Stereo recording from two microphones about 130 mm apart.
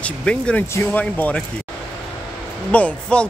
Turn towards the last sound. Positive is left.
turn(degrees=10)  # may be behind; listen again after turning